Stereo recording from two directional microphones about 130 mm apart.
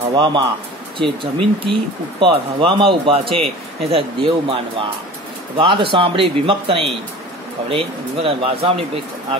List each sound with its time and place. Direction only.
0.1 s speech: 35° right (ahead or behind)